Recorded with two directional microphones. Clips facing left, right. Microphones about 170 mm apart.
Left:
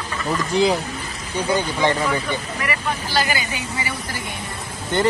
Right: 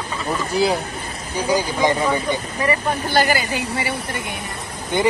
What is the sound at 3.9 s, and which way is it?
Speech, 25° right (ahead or behind).